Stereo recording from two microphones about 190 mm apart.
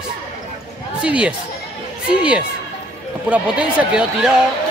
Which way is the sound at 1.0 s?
5° right (ahead or behind).